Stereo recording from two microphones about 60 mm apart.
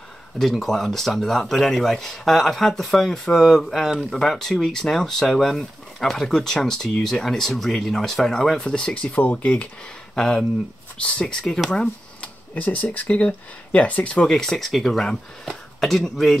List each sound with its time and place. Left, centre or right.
0.4 s speech: centre; by 9.7 s left
10.1 s speech: centre
11.6 s speech: centre
12.6 s speech: left
14.3 s speech: centre